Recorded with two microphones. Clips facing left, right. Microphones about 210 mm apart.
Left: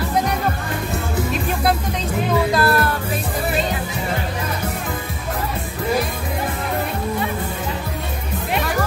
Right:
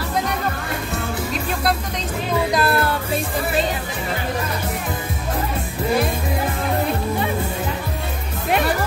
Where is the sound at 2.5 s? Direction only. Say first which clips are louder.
Left 2 dB; 20° right (ahead or behind).